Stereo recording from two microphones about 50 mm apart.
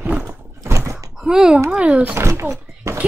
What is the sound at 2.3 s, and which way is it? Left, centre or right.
Speech, right.